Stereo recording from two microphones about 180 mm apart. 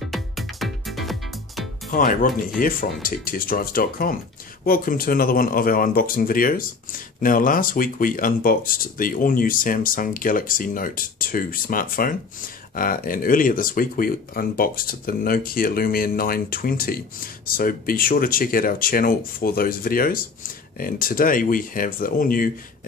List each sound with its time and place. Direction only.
0.1 s music: centre (ahead or behind)
1.9 s speech: 50° left (ahead or behind)